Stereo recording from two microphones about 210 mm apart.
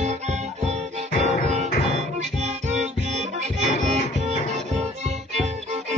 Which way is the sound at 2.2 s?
35° right (ahead or behind).